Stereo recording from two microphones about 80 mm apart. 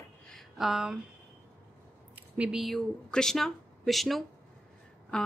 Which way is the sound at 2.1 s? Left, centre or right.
Centre.